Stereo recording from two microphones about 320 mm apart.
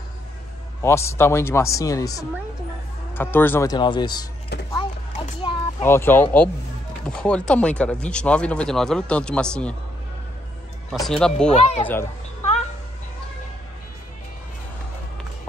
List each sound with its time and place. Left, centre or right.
0.8 s speech: centre
4.7 s a sound: centre
5.9 s speech: centre
11.0 s speech: centre
11.5 s speech: centre